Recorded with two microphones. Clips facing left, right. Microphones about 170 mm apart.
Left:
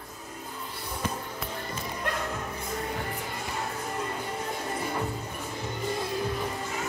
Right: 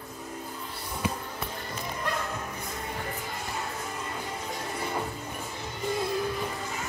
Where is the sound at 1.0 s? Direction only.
10° right (ahead or behind).